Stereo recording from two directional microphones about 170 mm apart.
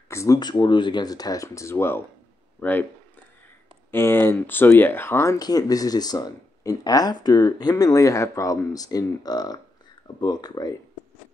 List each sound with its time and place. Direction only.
0.1 s speech: 20° left (ahead or behind)
3.9 s speech: 10° left (ahead or behind)